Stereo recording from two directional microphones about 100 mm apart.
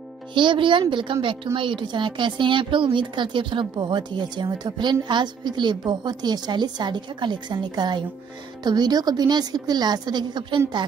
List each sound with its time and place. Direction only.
0.3 s a woman's voice: 55° right (ahead or behind)